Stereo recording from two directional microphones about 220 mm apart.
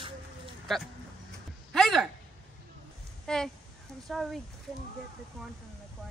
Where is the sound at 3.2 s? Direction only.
5° left (ahead or behind).